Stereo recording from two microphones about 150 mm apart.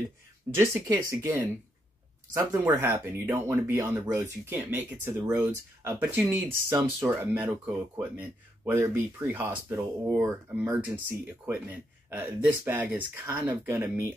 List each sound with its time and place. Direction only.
0.6 s speech: 20° right (ahead or behind)